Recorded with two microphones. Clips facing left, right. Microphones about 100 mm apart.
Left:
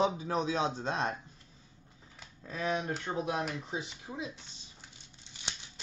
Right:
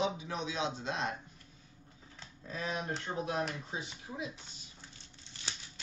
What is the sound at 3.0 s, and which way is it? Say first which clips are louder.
Speech: left 2 dB; 20° left (ahead or behind).